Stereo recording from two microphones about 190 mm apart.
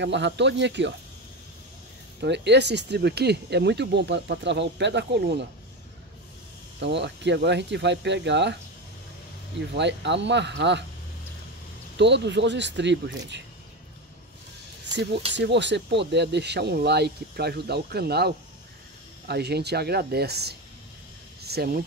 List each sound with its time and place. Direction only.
0.0 s speech: 65° right (ahead or behind)
2.2 s speech: 65° right (ahead or behind)
6.8 s speech: 65° right (ahead or behind)
9.8 s speech: 65° right (ahead or behind)
12.0 s speech: 65° right (ahead or behind)
15.3 s speech: 65° right (ahead or behind)